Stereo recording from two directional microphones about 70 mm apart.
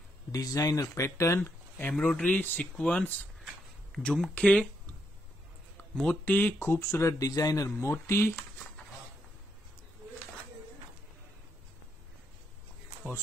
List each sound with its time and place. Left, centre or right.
0.3 s speech: left
2.0 s speech: centre
3.9 s speech: centre
6.0 s speech: left